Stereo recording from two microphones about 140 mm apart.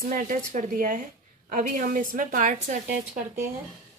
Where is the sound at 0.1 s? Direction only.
70° right (ahead or behind).